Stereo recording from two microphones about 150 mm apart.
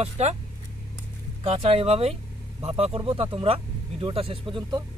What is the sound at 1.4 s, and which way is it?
Speech, 40° right (ahead or behind).